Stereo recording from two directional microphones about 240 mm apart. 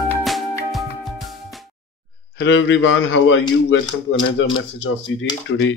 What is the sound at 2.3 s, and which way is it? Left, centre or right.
Speech, left.